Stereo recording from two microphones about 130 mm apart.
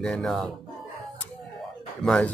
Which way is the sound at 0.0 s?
5° left (ahead or behind).